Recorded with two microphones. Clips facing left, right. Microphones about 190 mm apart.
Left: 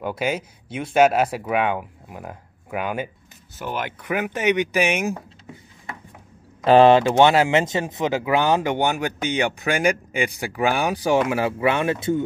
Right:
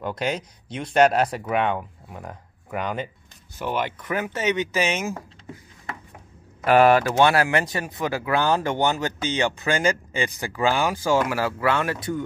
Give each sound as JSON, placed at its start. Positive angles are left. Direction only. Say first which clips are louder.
{"t": 0.0, "sound": "speech", "louder": "left 2 dB", "side_deg": 5}
{"t": 4.0, "sound": "speech", "louder": "left 3 dB", "side_deg": 15}
{"t": 6.6, "sound": "speech", "louder": "left 3 dB", "side_deg": 25}